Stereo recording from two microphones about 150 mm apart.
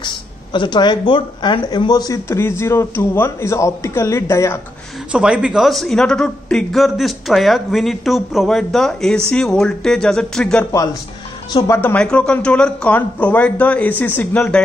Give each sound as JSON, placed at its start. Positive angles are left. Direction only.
{"t": 0.0, "sound": "speech", "side_deg": 30}
{"t": 5.1, "sound": "a man's voice", "side_deg": -5}
{"t": 10.7, "sound": "speech", "side_deg": 20}
{"t": 11.8, "sound": "speech", "side_deg": 10}